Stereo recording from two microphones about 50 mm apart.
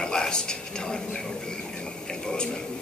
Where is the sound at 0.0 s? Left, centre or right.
Centre.